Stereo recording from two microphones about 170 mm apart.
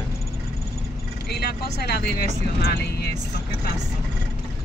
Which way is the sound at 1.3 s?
70° left (ahead or behind).